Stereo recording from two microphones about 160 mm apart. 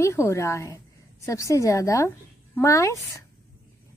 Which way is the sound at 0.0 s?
15° left (ahead or behind).